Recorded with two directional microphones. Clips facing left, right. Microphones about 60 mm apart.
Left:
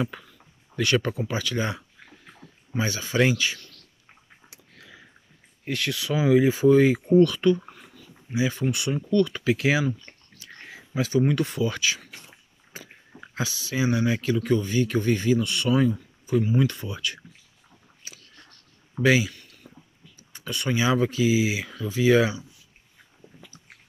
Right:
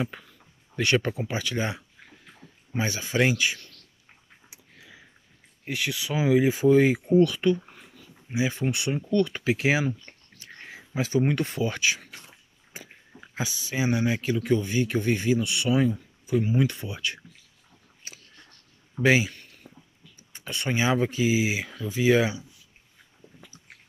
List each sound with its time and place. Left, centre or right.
0.7 s speech: right
5.7 s speech: centre
11.0 s speech: right
18.0 s biting: right
19.0 s a sound: right
20.3 s speech: right